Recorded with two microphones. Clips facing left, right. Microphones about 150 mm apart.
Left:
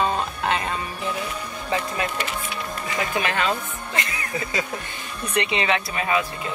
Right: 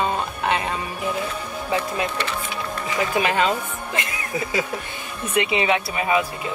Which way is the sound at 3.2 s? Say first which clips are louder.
Right 4 dB; 15° right (ahead or behind).